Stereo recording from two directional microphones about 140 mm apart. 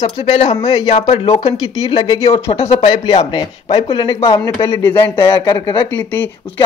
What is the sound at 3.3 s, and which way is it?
Speech, 35° left (ahead or behind).